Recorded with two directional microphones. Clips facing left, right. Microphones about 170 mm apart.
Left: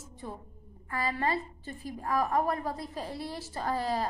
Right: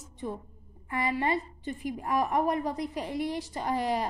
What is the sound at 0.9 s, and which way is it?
A woman's voice, 20° right (ahead or behind).